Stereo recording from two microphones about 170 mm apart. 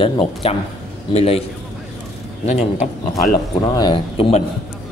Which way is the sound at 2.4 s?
45° left (ahead or behind).